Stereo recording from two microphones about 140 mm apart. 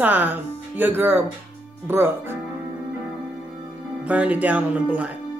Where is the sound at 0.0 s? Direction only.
15° right (ahead or behind).